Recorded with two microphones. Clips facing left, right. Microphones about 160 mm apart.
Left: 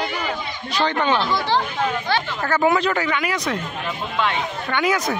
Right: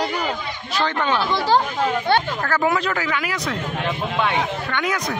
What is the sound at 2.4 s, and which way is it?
Speech, centre (ahead or behind).